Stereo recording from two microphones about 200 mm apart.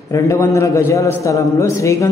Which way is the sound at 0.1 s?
15° left (ahead or behind).